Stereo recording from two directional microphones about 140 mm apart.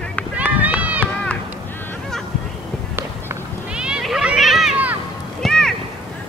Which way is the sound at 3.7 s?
5° right (ahead or behind).